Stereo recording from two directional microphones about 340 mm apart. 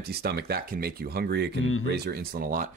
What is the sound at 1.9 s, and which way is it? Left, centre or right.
Speech, right.